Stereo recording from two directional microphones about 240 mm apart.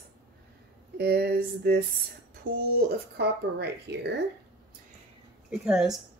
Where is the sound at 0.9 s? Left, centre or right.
Right.